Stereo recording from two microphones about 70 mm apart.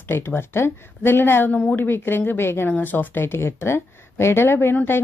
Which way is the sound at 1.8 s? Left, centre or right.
Left.